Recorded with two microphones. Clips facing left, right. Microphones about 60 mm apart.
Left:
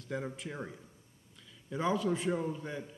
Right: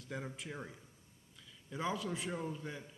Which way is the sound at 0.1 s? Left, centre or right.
Centre.